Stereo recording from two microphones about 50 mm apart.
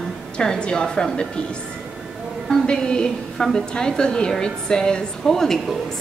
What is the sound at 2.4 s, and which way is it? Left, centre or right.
A woman's voice, centre.